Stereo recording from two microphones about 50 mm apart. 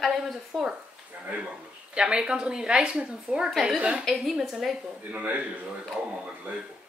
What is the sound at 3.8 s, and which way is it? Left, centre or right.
Speech, right.